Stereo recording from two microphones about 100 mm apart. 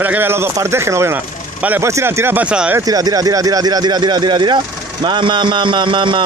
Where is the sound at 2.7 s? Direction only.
40° right (ahead or behind); by 6.2 s 55° right (ahead or behind).